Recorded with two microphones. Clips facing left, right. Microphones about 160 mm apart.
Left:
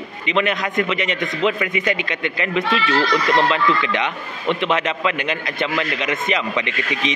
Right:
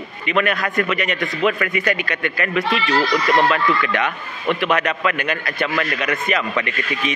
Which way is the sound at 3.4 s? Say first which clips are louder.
Even; 20° left (ahead or behind).